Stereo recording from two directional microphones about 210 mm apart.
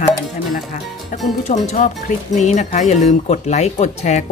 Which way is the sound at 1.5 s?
35° left (ahead or behind).